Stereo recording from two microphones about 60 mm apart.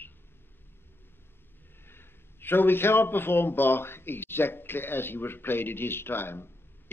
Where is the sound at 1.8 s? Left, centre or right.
Left.